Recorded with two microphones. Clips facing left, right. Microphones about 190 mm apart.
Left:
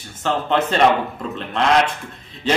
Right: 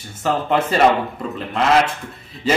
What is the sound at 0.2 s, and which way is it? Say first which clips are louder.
A man's voice: right 1 dB; 10° right (ahead or behind).